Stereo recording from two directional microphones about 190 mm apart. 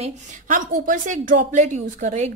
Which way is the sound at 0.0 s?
45° right (ahead or behind).